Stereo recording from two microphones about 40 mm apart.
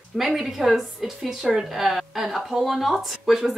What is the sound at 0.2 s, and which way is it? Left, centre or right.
Speech, centre.